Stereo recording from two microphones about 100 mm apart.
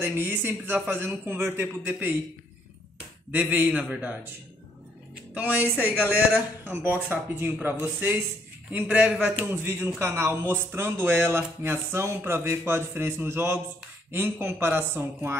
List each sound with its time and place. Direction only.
0.0 s speech: 20° right (ahead or behind)
3.3 s a man's voice: 20° right (ahead or behind)
5.3 s a man's voice: 15° right (ahead or behind)
9.6 s speech: 20° right (ahead or behind)